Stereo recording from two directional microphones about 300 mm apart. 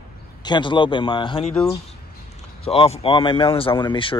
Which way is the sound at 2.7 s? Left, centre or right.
Centre.